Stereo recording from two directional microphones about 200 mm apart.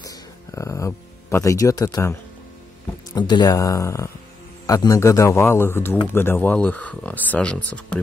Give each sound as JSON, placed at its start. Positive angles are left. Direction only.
{"t": 0.0, "sound": "music", "side_deg": 15}
{"t": 3.2, "sound": "speech", "side_deg": 20}